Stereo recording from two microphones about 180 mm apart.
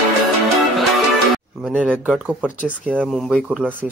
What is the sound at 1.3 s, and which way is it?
Music, centre (ahead or behind).